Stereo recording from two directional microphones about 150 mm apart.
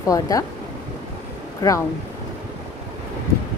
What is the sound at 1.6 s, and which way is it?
Speech, 20° left (ahead or behind).